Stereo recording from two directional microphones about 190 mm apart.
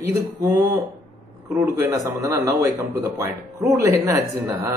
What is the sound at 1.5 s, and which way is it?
Speech, 15° right (ahead or behind).